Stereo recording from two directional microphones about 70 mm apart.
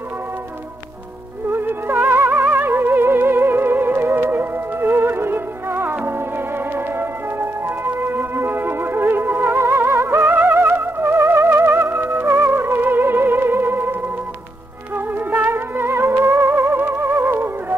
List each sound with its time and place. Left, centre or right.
1.5 s music: right
15.1 s music: right